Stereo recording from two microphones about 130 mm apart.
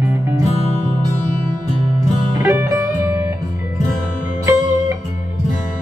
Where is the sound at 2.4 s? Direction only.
15° right (ahead or behind).